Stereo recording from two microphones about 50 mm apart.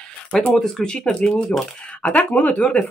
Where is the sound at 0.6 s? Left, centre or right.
Centre; by 2.7 s left.